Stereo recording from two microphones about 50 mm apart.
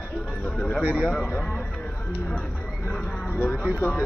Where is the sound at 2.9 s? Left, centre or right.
Left.